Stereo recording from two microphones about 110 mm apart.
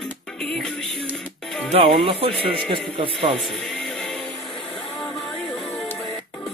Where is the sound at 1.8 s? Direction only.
55° right (ahead or behind).